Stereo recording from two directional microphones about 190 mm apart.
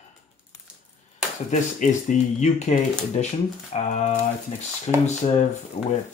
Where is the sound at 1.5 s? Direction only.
40° left (ahead or behind).